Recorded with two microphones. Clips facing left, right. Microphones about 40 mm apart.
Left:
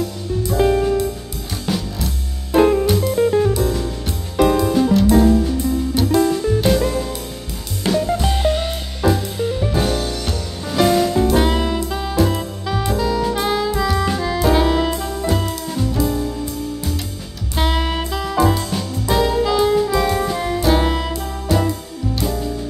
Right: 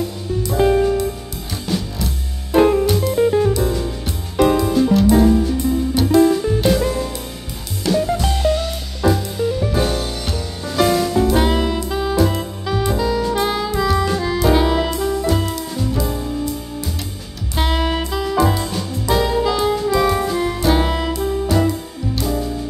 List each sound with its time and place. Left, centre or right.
0.5 s music: centre
7.9 s music: centre
8.4 s music: left
9.0 s music: centre
11.2 s saxophone: centre
14.1 s music: centre
17.6 s music: centre